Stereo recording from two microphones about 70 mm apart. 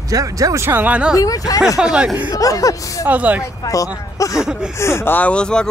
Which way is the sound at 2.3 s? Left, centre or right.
Left.